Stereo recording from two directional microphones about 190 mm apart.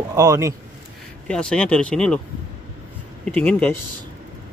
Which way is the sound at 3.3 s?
5° left (ahead or behind).